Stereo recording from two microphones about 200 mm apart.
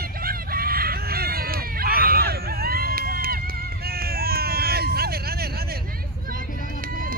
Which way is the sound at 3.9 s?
50° right (ahead or behind).